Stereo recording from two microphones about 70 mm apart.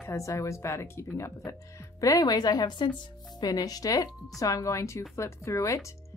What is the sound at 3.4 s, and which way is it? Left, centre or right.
Speech, left.